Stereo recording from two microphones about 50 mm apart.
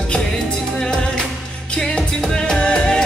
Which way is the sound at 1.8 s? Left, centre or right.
Centre.